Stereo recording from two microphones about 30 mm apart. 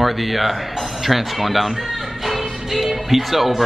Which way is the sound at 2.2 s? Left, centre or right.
Centre.